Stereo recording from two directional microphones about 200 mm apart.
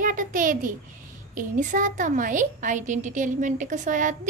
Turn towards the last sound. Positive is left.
turn(degrees=-40)  # may be behind; listen again after turning